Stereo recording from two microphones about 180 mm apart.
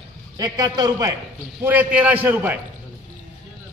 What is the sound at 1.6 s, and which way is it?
A man's voice, 10° right (ahead or behind).